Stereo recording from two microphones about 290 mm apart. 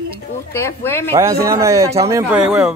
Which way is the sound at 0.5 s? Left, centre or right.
Centre.